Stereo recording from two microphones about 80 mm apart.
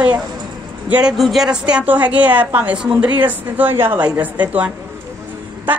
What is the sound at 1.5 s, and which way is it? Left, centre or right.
A woman's voice, centre.